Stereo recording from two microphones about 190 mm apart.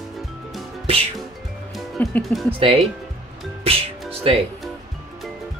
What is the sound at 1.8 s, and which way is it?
Music, 5° left (ahead or behind).